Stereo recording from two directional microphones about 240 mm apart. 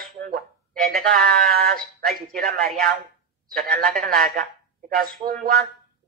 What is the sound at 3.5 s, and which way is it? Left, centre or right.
Speech, right.